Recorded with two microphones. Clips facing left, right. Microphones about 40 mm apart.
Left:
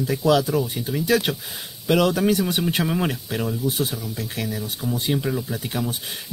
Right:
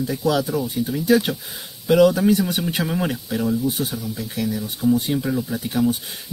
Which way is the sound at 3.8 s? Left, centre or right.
Left.